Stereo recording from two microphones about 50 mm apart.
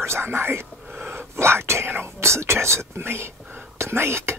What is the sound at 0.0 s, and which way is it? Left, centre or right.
Speech, right.